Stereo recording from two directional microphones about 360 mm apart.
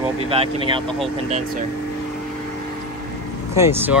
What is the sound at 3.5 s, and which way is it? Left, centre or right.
Speech, centre.